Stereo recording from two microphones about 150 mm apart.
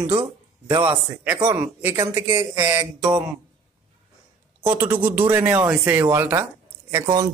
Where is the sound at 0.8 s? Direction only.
10° right (ahead or behind).